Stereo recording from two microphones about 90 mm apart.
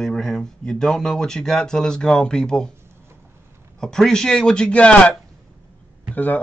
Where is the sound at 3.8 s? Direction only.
5° left (ahead or behind).